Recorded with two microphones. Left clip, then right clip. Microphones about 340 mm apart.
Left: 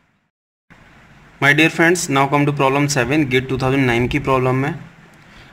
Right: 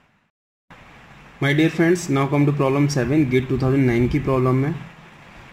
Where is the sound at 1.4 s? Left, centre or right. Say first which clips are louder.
Left 6 dB; left.